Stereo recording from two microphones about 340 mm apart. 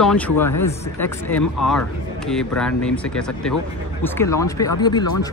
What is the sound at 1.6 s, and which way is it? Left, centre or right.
Speech, centre.